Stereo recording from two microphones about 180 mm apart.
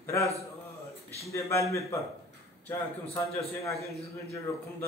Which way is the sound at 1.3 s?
15° left (ahead or behind).